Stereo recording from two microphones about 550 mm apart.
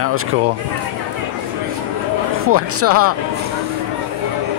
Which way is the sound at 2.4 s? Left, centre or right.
Right.